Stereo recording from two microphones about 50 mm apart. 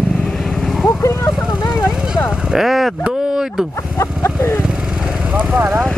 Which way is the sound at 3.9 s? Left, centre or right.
Left.